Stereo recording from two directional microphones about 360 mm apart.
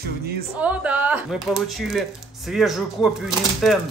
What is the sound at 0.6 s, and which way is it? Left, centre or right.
Speech, centre.